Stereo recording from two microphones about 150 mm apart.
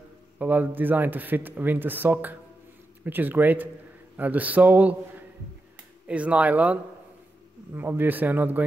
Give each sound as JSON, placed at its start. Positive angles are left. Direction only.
{"t": 0.4, "sound": "speech", "side_deg": -10}